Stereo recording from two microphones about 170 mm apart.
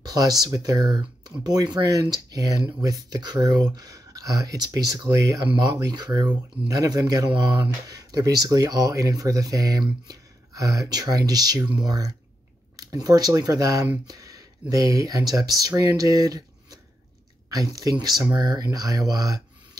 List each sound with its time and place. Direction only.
0.0 s speech: 25° right (ahead or behind)
17.5 s speech: 20° right (ahead or behind)